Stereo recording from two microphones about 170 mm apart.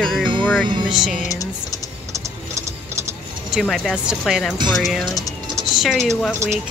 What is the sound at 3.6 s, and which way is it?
Speech, centre (ahead or behind).